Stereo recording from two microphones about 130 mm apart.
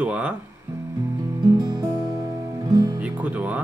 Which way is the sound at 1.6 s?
30° right (ahead or behind).